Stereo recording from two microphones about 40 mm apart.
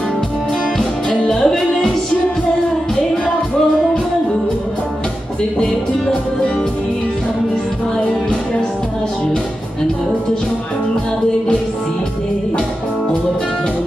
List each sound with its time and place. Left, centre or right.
1.4 s music: centre